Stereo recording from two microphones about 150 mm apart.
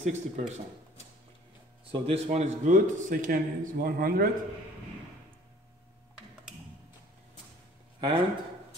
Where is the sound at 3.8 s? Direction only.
80° right.